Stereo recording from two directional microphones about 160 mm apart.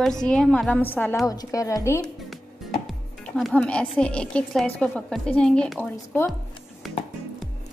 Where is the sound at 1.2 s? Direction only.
20° left (ahead or behind).